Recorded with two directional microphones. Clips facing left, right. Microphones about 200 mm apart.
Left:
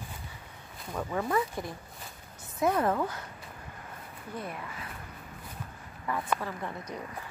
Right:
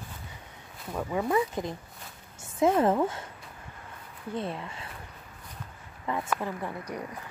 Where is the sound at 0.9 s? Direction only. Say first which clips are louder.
Right 3 dB; 10° right (ahead or behind); by 3.2 s 25° right (ahead or behind).